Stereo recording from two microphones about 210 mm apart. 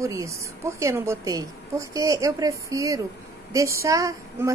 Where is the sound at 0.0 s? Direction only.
15° right (ahead or behind).